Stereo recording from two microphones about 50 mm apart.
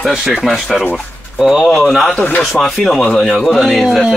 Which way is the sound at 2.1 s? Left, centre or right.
Left.